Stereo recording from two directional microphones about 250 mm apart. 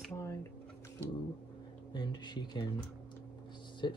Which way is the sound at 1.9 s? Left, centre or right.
Centre.